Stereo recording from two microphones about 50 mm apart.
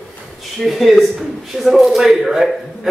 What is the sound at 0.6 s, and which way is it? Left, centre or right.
Speech, centre.